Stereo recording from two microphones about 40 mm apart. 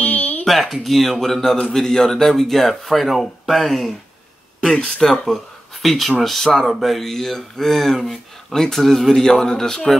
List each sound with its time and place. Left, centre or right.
0.0 s a sound: left
0.5 s speech: centre
4.7 s speech: centre